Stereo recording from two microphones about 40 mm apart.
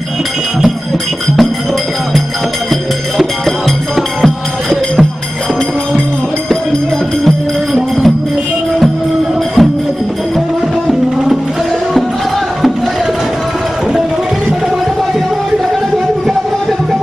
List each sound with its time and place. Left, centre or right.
3.2 s music: centre
9.6 s music: centre